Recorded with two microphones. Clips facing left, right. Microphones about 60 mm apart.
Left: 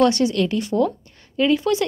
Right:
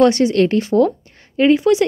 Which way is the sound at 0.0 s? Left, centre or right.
Right.